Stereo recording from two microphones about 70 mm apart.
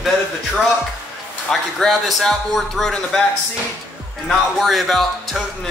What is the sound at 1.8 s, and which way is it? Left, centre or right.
Speech, centre.